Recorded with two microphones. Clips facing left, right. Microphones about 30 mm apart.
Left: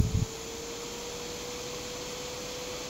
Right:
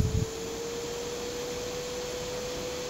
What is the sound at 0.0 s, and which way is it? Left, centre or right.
Vacuum cleaner, centre.